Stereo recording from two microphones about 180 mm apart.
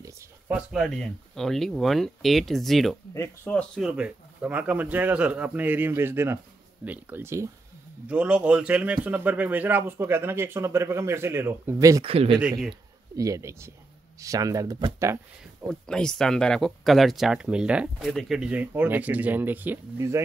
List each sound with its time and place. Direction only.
0.0 s speech: 5° right (ahead or behind)
12.1 s speech: 30° right (ahead or behind)
12.4 s speech: centre (ahead or behind)
13.1 s speech: 20° right (ahead or behind)
15.7 s speech: 5° left (ahead or behind); by 20.2 s 15° right (ahead or behind)